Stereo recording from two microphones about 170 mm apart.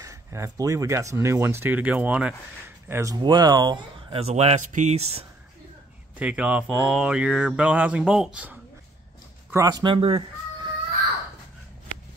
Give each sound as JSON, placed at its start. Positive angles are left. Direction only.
{"t": 0.0, "sound": "speech", "side_deg": -15}
{"t": 2.9, "sound": "speech", "side_deg": -20}
{"t": 6.1, "sound": "speech", "side_deg": -5}
{"t": 9.5, "sound": "speech", "side_deg": -20}